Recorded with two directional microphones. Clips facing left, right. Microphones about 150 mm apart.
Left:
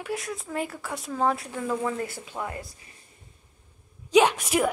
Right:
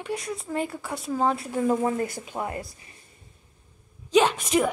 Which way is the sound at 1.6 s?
25° right (ahead or behind).